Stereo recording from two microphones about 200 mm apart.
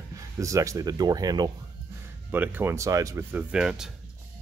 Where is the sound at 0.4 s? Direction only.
15° right (ahead or behind).